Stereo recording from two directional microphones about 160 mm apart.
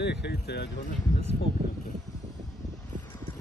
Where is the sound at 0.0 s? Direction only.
90° left.